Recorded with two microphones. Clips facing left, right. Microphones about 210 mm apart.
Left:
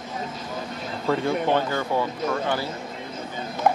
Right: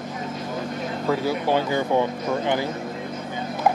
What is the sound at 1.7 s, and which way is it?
Speech, 20° right (ahead or behind).